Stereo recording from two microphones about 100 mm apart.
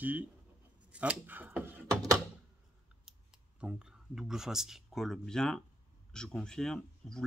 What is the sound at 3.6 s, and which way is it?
Speech, 5° right (ahead or behind).